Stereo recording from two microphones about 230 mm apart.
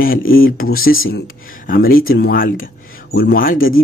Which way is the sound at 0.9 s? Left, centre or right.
Left.